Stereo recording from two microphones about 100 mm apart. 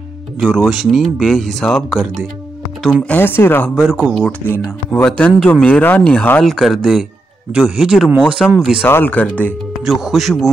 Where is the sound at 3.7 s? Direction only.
5° right (ahead or behind).